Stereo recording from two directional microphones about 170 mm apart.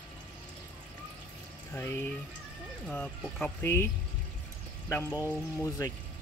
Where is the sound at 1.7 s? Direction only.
15° left (ahead or behind).